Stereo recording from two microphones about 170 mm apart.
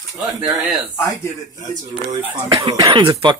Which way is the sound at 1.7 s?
45° right (ahead or behind).